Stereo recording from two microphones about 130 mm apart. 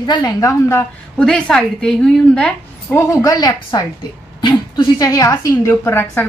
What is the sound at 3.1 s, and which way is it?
A woman's voice, 25° left (ahead or behind).